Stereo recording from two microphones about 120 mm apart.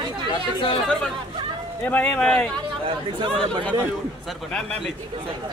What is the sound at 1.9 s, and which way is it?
Speech, 10° left (ahead or behind).